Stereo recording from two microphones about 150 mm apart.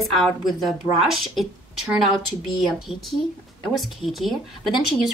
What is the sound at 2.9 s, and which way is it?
Speech, 40° left (ahead or behind).